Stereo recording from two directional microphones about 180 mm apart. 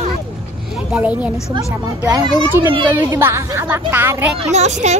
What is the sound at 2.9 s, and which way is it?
Speech, 15° right (ahead or behind).